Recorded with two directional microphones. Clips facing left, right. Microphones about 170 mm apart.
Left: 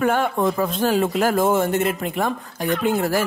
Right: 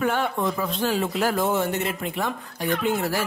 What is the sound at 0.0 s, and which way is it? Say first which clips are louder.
Speech: left 4 dB; 45° left (ahead or behind).